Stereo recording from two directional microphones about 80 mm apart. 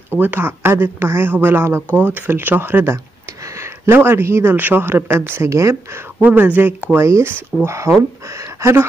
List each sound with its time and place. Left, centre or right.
0.2 s speech: right
6.2 s speech: right
7.0 s speech: right